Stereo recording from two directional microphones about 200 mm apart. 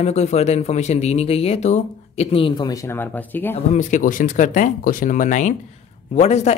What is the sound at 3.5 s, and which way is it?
Speech, 35° left (ahead or behind).